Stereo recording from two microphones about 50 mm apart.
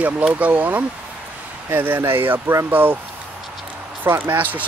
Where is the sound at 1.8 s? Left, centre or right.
Right.